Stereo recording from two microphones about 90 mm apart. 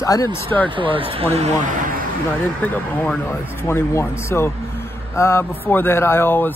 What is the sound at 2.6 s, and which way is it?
Speech, 20° left (ahead or behind).